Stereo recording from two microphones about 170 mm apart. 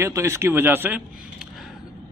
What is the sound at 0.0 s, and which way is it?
Speech, 15° right (ahead or behind).